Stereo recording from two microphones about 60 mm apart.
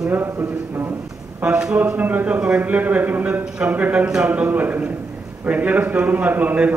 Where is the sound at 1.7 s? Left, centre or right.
Right.